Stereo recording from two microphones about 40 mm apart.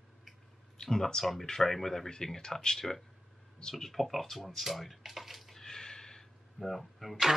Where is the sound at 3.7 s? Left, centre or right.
Centre.